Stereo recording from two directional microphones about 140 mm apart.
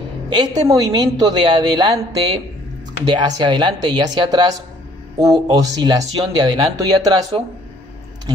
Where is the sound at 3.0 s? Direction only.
30° right (ahead or behind).